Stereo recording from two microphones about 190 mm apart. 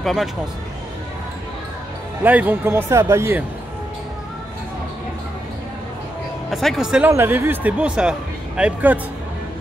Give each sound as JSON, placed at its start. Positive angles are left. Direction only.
{"t": 0.0, "sound": "a man's voice", "side_deg": 0}
{"t": 2.2, "sound": "speech", "side_deg": -10}
{"t": 6.5, "sound": "speech", "side_deg": 0}